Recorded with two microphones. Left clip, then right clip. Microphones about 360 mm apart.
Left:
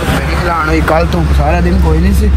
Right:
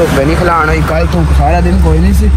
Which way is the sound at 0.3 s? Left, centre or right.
Centre.